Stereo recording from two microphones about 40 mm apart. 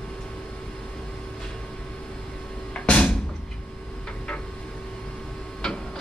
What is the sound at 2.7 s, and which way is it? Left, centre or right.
Music, left.